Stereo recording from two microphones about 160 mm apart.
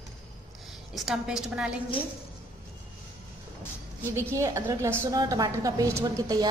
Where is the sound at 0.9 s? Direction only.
5° right (ahead or behind).